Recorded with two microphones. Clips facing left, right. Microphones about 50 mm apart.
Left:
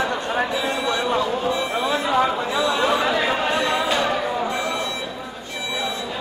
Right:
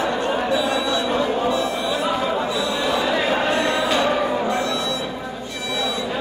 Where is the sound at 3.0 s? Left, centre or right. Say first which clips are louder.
Right 1 dB; centre.